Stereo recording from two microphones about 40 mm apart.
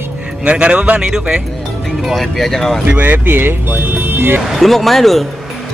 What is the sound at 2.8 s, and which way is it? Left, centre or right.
Speech, right.